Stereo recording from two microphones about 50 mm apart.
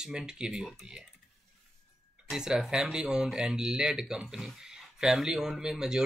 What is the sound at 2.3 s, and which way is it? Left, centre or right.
Speech, centre.